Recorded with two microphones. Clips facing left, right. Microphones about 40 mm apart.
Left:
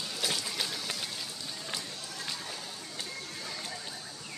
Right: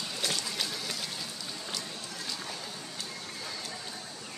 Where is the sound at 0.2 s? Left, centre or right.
Centre.